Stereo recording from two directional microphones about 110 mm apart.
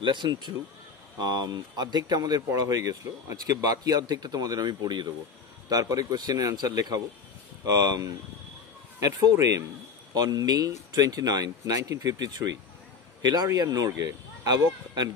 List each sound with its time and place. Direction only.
0.0 s speech: 45° right (ahead or behind)